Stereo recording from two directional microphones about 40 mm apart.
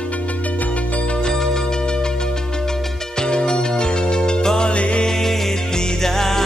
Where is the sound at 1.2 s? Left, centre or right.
Centre.